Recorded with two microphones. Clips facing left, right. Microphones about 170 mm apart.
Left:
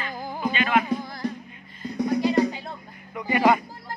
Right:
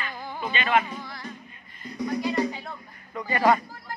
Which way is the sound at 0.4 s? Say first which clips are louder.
Left 1 dB; 5° left (ahead or behind).